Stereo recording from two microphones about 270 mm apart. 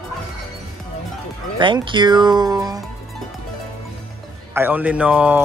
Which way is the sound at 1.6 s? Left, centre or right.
Centre.